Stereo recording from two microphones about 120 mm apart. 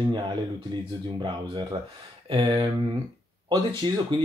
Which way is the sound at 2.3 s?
50° right (ahead or behind).